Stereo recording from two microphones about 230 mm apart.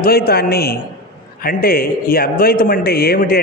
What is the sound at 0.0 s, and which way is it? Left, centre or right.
A man's voice, left.